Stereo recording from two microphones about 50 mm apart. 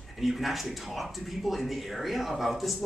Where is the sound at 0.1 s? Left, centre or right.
Centre.